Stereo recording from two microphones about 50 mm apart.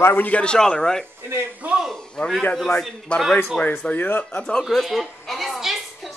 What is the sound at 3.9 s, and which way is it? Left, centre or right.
Speech, left.